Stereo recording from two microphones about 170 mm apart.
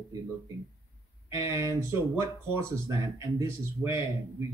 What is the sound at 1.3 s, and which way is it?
Speech, 15° right (ahead or behind).